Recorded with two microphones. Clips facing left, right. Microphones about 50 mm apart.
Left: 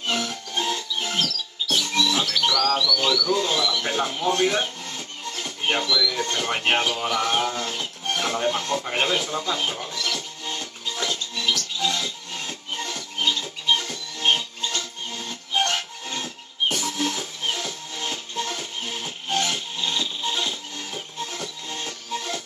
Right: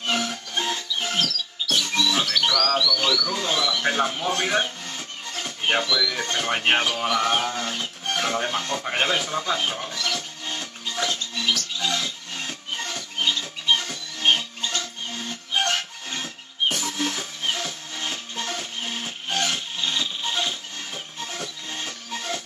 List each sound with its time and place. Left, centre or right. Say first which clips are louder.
0.1 s music: right 1 dB; centre
2.9 s speech: left 2 dB; centre
8.2 s a sound: left 1 dB; centre
11.5 s music: left 1 dB; centre